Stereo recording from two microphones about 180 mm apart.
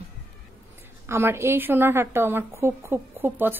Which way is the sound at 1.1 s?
15° right (ahead or behind).